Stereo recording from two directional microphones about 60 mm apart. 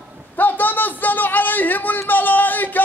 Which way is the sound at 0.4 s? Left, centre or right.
Left.